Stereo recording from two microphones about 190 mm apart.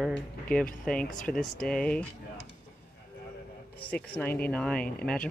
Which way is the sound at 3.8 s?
5° left (ahead or behind).